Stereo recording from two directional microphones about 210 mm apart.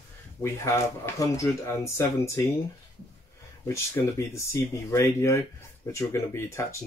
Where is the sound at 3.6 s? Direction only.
15° left (ahead or behind).